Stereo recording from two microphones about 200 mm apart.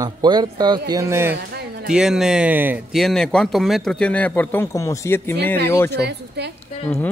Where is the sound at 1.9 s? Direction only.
5° right (ahead or behind).